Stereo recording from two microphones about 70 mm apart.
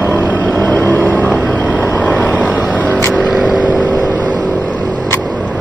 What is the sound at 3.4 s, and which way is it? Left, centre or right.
Vehicle, centre.